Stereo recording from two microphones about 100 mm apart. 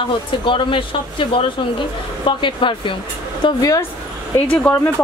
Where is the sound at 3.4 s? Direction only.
40° left (ahead or behind).